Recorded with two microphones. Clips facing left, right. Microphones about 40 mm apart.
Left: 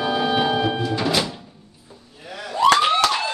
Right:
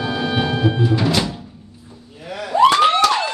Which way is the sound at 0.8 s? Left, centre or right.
Centre.